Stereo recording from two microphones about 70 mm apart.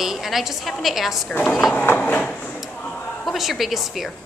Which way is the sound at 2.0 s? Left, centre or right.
Centre.